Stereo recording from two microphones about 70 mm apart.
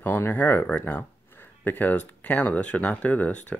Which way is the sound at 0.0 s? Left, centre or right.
Left.